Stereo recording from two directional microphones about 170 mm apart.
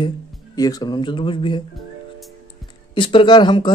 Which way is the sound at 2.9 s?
30° left (ahead or behind).